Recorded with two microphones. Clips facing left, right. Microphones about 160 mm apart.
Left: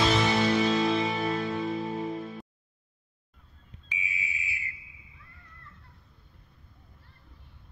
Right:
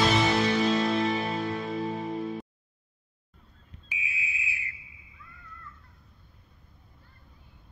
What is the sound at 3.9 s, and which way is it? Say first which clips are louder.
Fire alarm: left 1 dB; 10° right (ahead or behind).